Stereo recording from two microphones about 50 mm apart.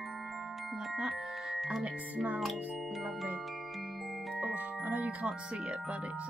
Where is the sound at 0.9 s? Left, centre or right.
Centre.